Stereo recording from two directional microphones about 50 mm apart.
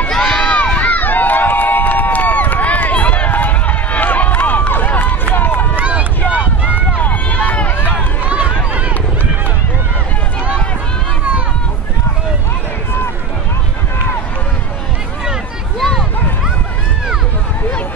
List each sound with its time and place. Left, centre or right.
0.1 s run: centre
0.5 s run: left
5.8 s run: right
6.2 s run: left
7.9 s run: right
15.8 s a sound: centre